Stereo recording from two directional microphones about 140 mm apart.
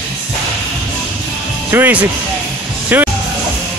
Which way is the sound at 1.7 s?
15° right (ahead or behind).